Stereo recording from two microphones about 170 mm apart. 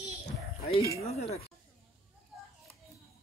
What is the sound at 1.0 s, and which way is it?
Speech, 40° left (ahead or behind).